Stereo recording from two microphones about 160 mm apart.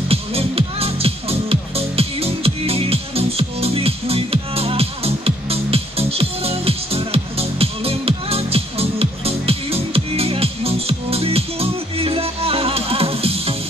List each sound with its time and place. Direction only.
0.1 s music: 35° right (ahead or behind)